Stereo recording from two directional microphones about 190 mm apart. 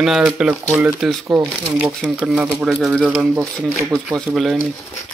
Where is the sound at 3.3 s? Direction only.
15° right (ahead or behind).